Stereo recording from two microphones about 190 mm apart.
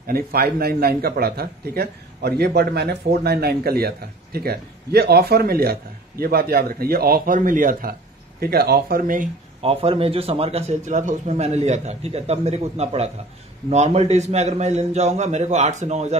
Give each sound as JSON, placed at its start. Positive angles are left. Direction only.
{"t": 0.0, "sound": "a man's voice", "side_deg": -50}
{"t": 9.6, "sound": "a man's voice", "side_deg": -30}